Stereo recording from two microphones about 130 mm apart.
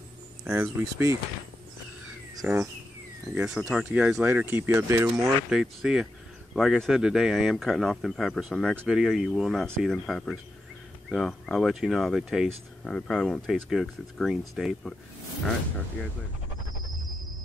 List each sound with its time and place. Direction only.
0.5 s speech: 20° right (ahead or behind)
2.4 s speech: 15° right (ahead or behind)
3.3 s speech: 5° right (ahead or behind); by 5.3 s 20° right (ahead or behind)
5.5 s speech: 5° right (ahead or behind)
16.8 s music: centre (ahead or behind)